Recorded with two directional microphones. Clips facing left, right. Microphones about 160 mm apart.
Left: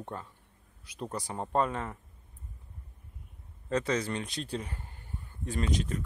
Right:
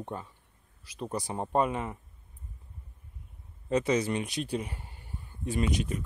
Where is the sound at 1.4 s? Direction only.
15° right (ahead or behind).